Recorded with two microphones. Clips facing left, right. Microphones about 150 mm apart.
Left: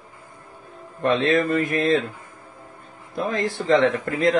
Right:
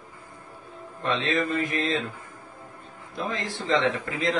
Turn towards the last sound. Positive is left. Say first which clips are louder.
# left 6 dB
turn(degrees=50)  # may be behind; listen again after turning